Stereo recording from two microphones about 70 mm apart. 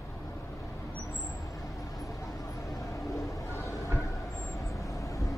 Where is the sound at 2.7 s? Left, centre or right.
Left.